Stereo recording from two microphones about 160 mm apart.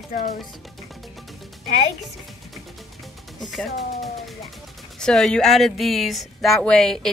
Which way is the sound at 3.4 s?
Centre (ahead or behind).